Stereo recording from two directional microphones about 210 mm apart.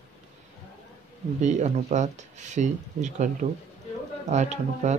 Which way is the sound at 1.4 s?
35° right (ahead or behind).